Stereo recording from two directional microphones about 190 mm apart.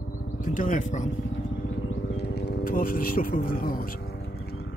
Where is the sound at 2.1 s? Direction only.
60° left (ahead or behind).